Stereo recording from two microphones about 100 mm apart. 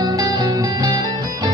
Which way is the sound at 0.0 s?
40° right (ahead or behind).